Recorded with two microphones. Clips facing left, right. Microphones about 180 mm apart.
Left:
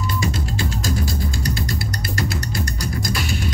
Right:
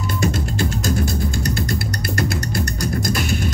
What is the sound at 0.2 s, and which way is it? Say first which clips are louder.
Music: right 7 dB; 50° right (ahead or behind).